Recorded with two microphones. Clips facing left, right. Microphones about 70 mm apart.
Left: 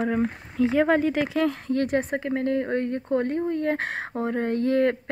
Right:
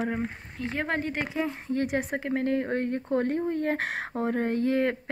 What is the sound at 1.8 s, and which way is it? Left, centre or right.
Speech, left.